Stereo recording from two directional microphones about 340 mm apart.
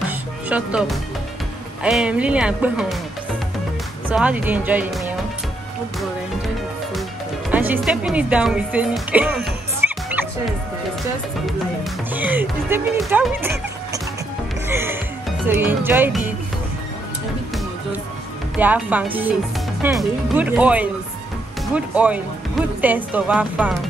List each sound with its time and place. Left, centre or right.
0.1 s music: centre
1.8 s speech: centre
4.1 s speech: centre
5.9 s music: centre
7.5 s speech: centre
9.8 s music: centre
11.4 s speech: centre
14.7 s speech: centre
18.6 s speech: centre